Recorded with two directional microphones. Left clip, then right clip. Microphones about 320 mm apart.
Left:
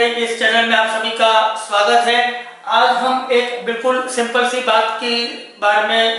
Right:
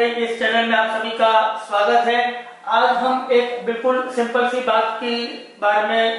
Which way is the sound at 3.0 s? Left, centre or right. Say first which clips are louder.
Left 2 dB; centre.